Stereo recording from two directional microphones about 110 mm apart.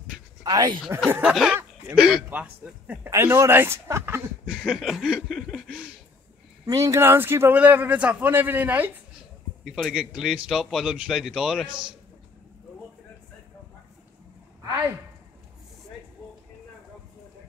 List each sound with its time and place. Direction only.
0.4 s speech: 35° right (ahead or behind)
1.2 s a man's voice: 5° right (ahead or behind)
3.1 s a man's voice: 25° right (ahead or behind)
4.5 s speech: 5° right (ahead or behind)
6.6 s a man's voice: 30° right (ahead or behind)
9.7 s speech: centre (ahead or behind)